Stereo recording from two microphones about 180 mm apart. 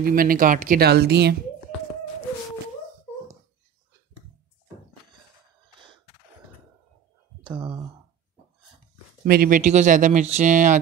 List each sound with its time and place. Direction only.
0.0 s speech: 55° right (ahead or behind)
7.5 s speech: 25° right (ahead or behind)
9.2 s speech: 55° right (ahead or behind)